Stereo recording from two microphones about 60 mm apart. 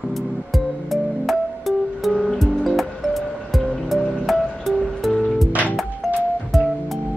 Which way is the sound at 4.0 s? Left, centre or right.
Centre.